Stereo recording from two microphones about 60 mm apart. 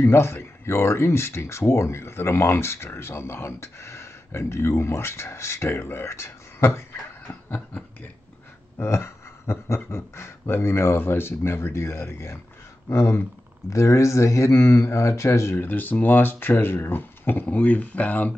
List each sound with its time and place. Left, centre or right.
0.0 s speech: left
7.4 s a sound: left
8.7 s speech: left
15.5 s speech: left
17.5 s speech: left